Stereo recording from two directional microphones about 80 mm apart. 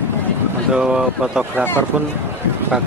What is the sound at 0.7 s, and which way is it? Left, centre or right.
Speech, centre.